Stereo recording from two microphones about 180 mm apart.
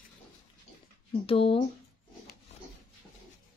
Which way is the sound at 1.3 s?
30° left (ahead or behind).